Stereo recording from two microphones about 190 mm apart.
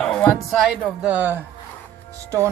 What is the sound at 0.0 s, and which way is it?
Speech, 5° left (ahead or behind).